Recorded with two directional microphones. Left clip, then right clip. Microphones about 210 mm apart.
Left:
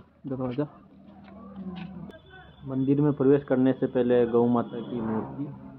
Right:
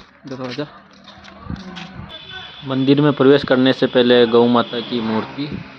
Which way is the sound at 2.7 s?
35° right (ahead or behind).